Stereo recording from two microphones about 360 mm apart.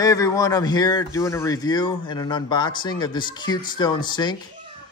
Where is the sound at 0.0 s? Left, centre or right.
Centre.